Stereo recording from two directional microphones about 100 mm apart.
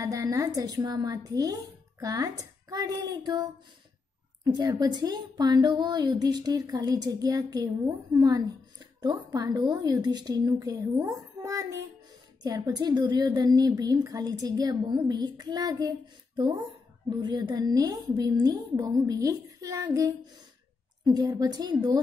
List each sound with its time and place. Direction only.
0.0 s a woman's voice: 35° right (ahead or behind)
4.6 s a woman's voice: 40° right (ahead or behind)
21.0 s a woman's voice: 45° right (ahead or behind)